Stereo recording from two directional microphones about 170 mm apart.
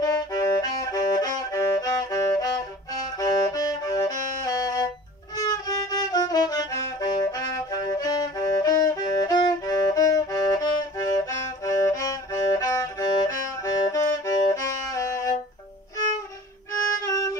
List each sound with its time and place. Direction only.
0.0 s music: 20° left (ahead or behind)
17.0 s music: 20° left (ahead or behind)